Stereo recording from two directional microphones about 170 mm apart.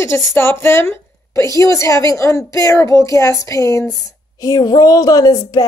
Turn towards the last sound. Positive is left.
turn(degrees=20)  # may be behind; listen again after turning